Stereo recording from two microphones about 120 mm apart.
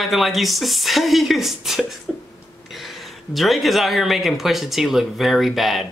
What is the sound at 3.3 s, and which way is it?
Speech, centre (ahead or behind).